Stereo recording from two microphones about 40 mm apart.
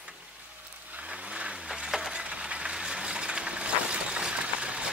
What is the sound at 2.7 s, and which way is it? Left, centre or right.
Vehicle, centre.